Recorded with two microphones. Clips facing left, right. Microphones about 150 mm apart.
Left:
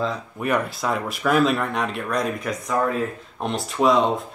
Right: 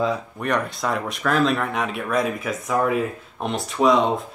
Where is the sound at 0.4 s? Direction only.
5° left (ahead or behind).